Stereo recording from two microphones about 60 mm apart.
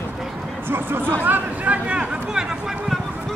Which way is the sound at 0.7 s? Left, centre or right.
Right.